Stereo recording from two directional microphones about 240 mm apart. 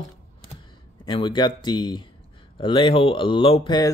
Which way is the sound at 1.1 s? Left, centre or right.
Centre.